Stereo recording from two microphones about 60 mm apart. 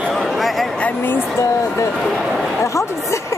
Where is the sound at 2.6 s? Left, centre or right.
Left.